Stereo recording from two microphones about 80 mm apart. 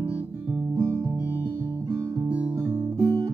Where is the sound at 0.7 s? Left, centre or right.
Right.